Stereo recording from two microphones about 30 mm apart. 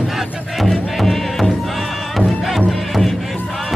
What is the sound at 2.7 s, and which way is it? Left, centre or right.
Music, centre.